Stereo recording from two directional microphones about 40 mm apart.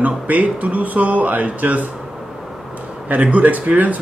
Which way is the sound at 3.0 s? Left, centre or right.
Right.